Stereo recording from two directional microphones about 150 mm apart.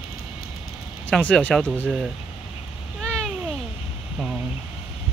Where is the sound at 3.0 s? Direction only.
5° left (ahead or behind).